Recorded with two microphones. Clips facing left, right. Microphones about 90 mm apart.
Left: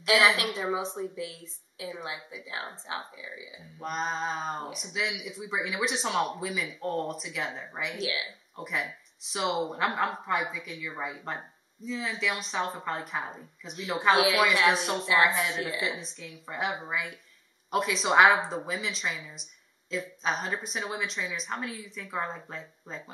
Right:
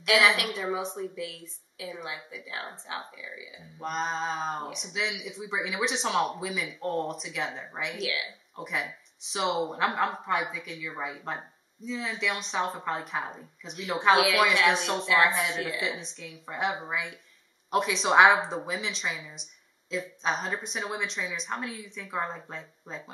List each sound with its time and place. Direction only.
0.1 s speech: centre (ahead or behind)
0.4 s a woman's voice: 25° left (ahead or behind)
3.8 s speech: centre (ahead or behind)
8.0 s a woman's voice: 25° left (ahead or behind)
8.5 s speech: centre (ahead or behind)